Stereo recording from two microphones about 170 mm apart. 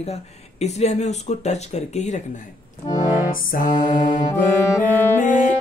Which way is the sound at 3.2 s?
55° left (ahead or behind).